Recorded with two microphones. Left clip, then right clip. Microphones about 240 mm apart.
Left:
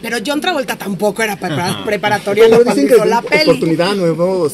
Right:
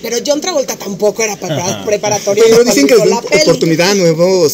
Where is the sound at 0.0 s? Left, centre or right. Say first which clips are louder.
Right 3 dB; left.